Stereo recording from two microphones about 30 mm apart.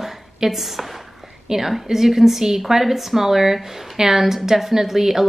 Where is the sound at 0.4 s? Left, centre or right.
Centre.